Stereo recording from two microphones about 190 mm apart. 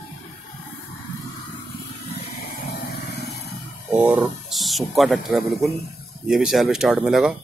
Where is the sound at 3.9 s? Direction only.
5° right (ahead or behind).